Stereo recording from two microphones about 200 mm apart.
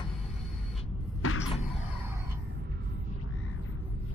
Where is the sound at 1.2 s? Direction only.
90° left.